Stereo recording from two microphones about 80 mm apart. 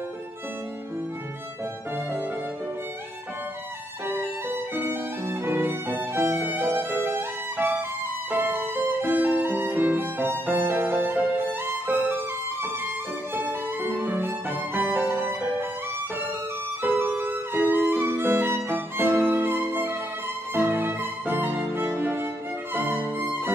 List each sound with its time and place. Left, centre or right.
4.1 s violin: right
11.9 s music: right
13.3 s music: right
16.8 s music: right